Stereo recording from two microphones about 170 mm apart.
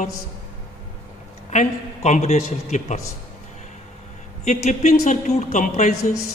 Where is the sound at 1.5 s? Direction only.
45° left (ahead or behind).